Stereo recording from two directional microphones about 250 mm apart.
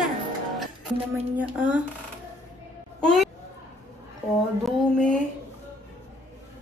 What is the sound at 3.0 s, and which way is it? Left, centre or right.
Speech, centre.